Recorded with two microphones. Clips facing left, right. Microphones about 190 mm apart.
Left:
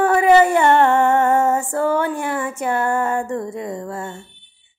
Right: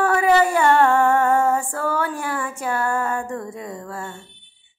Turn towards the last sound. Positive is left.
turn(degrees=20)  # may be behind; listen again after turning